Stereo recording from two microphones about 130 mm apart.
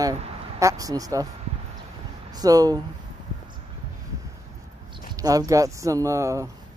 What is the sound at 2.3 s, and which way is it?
Speech, 30° right (ahead or behind).